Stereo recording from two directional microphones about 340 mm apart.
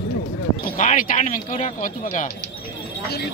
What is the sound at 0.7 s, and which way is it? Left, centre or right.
Speech, left.